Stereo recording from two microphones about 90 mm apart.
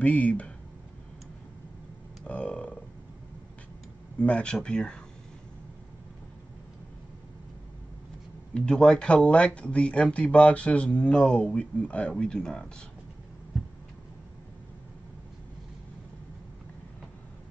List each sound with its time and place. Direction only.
0.0 s speech: 15° left (ahead or behind)
2.2 s a sound: 15° left (ahead or behind)
4.2 s speech: 10° left (ahead or behind)
8.5 s speech: 10° left (ahead or behind)